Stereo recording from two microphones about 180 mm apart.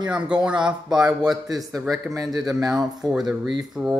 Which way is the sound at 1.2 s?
20° right (ahead or behind).